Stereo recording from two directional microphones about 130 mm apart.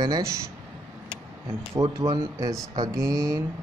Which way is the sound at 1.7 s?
25° right (ahead or behind).